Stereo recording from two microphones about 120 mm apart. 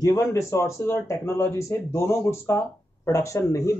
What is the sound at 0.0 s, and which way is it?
Speech, 30° left (ahead or behind).